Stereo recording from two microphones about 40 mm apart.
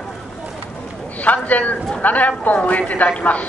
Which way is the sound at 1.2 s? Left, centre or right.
Left.